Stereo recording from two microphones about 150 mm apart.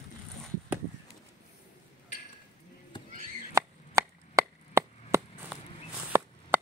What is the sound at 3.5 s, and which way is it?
Chop, 20° right (ahead or behind).